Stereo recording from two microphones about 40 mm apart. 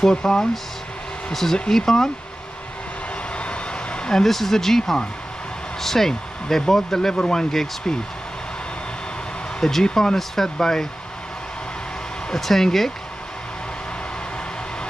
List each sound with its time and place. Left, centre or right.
0.0 s speech: centre
3.3 s vehicle: left
4.2 s speech: centre
9.6 s speech: centre
12.4 s speech: centre